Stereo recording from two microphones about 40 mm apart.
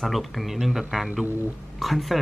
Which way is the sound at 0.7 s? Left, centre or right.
Centre.